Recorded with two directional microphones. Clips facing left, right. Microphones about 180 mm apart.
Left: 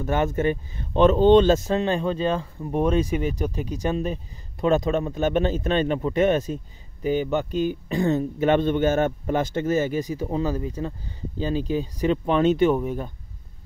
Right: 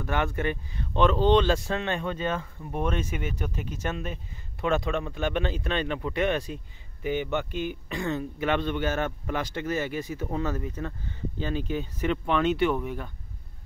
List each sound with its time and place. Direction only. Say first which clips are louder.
0.4 s speech: left 6 dB; 40° left (ahead or behind)
1.8 s speech: left 6 dB; 30° left (ahead or behind)
5.9 s speech: left 7 dB; 30° left (ahead or behind)
6.2 s speech: left 6 dB; 45° left (ahead or behind)
10.3 s speech: left 4 dB; 30° left (ahead or behind)